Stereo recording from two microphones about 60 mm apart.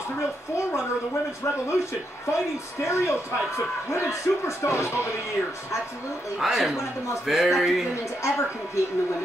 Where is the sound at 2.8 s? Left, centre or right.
Left.